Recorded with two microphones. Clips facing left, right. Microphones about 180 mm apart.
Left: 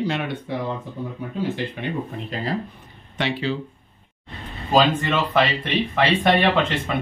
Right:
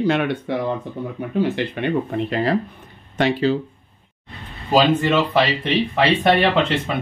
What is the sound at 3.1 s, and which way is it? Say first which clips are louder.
Speech: right 6 dB; 45° right (ahead or behind).